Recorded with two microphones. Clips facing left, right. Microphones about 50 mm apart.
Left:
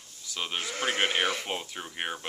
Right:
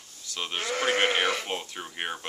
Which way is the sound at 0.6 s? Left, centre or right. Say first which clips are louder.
Right 5 dB; right.